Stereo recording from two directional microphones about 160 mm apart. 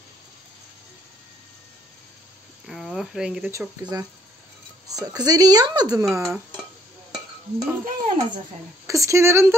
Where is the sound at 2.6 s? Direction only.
Centre (ahead or behind).